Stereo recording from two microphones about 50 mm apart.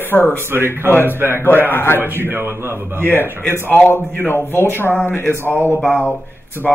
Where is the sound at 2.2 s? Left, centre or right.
Right.